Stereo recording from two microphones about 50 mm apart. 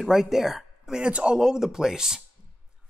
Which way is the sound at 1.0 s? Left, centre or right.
Right.